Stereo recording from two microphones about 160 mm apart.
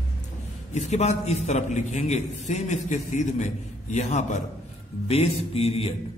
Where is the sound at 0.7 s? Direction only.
45° left (ahead or behind).